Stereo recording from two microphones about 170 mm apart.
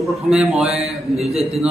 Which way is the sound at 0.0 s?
Centre (ahead or behind).